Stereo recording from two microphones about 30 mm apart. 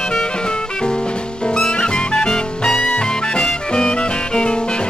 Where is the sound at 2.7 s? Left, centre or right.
Left.